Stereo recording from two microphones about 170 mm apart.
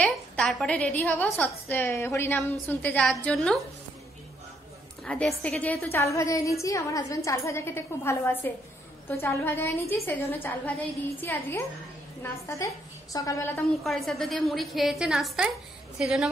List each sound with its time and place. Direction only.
0.0 s a woman's voice: 5° left (ahead or behind)
5.0 s a woman's voice: 5° left (ahead or behind)
13.6 s a woman's voice: centre (ahead or behind)